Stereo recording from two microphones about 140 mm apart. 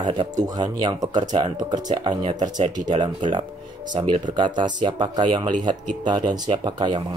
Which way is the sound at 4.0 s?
50° right (ahead or behind).